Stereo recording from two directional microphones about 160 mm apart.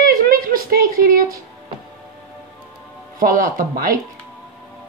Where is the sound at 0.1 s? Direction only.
65° right (ahead or behind).